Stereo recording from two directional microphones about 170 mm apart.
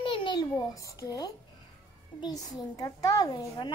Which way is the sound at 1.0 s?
20° left (ahead or behind).